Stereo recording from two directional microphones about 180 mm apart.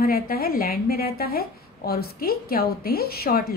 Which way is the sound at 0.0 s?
55° left (ahead or behind).